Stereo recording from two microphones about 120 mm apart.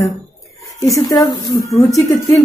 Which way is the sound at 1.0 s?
30° left (ahead or behind).